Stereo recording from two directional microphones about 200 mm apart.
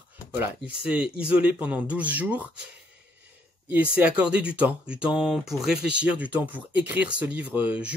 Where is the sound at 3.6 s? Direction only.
5° right (ahead or behind).